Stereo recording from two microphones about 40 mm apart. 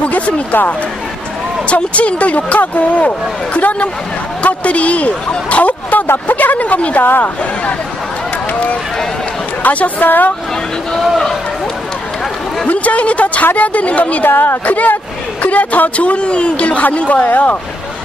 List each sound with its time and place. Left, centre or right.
0.1 s speech: left
1.7 s speech: left
9.6 s speech: left
11.0 s a man's voice: centre
12.6 s speech: left
14.3 s a woman's voice: left
14.7 s speech: left